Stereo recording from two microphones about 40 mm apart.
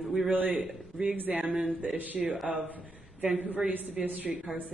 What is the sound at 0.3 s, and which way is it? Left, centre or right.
A woman's voice, right.